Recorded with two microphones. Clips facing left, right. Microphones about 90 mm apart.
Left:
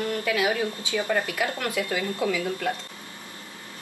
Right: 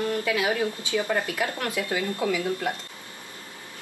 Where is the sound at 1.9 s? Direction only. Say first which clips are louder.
Right 2 dB; 20° right (ahead or behind).